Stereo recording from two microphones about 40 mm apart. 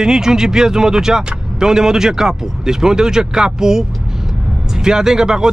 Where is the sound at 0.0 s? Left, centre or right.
Centre.